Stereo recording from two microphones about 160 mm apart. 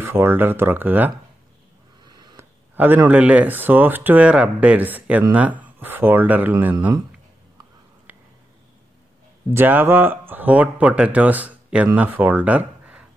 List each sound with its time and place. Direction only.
0.0 s speech: 15° right (ahead or behind)
2.0 s a sound: 25° right (ahead or behind)
2.7 s speech: 10° right (ahead or behind)
9.5 s speech: 15° right (ahead or behind)